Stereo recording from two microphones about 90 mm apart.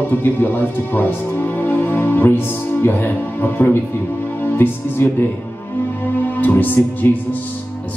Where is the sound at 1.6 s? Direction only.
20° left (ahead or behind).